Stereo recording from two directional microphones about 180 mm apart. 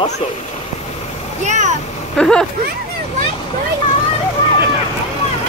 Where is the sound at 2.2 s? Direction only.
5° left (ahead or behind).